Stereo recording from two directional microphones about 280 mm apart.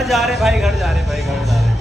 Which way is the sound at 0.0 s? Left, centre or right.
Centre.